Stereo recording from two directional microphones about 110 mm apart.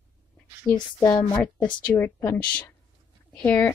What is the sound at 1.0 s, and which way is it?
Speech, 20° left (ahead or behind).